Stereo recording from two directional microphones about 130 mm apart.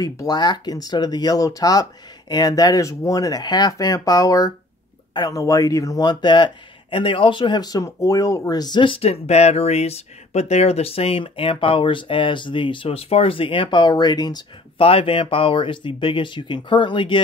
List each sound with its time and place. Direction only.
0.0 s speech: 30° left (ahead or behind)
14.9 s speech: 45° left (ahead or behind)